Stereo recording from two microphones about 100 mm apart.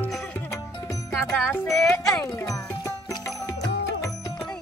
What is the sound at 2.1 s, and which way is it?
Music, 35° left (ahead or behind).